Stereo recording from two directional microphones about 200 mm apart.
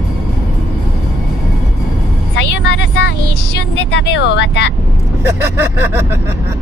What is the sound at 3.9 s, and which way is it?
Speech, 60° left (ahead or behind).